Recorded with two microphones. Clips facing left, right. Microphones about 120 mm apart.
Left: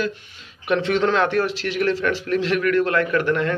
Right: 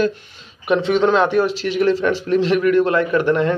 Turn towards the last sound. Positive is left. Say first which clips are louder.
# right 4 dB
turn(degrees=-25)  # may be behind; listen again after turning